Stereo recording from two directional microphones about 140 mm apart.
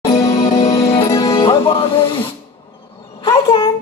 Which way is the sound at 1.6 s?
35° left (ahead or behind).